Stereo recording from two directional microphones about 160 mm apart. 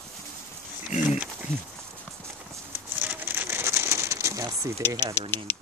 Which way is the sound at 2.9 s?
10° right (ahead or behind).